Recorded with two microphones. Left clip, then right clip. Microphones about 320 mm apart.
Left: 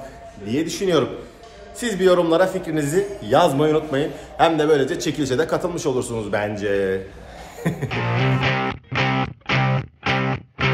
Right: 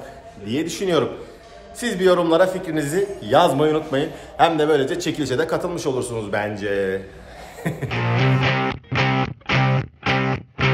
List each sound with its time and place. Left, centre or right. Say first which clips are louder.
0.5 s a man's voice: left 1 dB; centre
7.6 s music: even; centre